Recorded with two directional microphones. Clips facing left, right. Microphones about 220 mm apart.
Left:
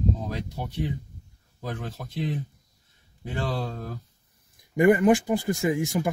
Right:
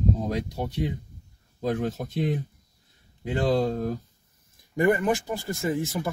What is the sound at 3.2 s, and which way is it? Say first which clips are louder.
Speech: right 7 dB; 15° right (ahead or behind).